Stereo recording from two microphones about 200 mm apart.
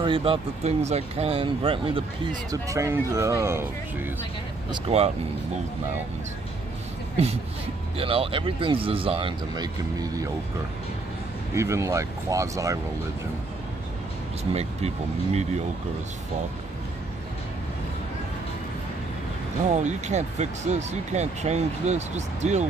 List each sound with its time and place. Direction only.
0.0 s speech: 25° right (ahead or behind)
2.5 s speech: 15° right (ahead or behind)
4.6 s speech: 30° right (ahead or behind)
8.0 s speech: 25° right (ahead or behind)
11.5 s speech: 15° right (ahead or behind)
14.5 s speech: 30° right (ahead or behind)
19.7 s speech: 35° right (ahead or behind)